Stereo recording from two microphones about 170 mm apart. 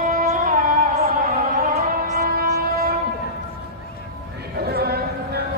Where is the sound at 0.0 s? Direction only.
55° right (ahead or behind).